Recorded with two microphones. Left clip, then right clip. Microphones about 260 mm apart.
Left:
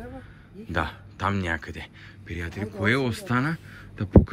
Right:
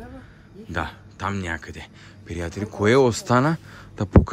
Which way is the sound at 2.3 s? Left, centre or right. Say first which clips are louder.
Right 3 dB; centre.